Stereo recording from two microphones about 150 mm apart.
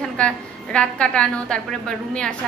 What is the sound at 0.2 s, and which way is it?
A woman's voice, 5° left (ahead or behind).